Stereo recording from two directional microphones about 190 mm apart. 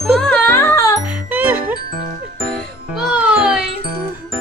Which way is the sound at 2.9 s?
5° right (ahead or behind).